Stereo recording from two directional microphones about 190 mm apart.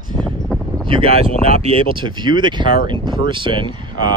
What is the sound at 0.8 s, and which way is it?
Speech, 30° right (ahead or behind).